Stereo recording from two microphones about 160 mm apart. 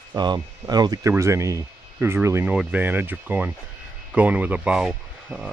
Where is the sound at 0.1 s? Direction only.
25° right (ahead or behind).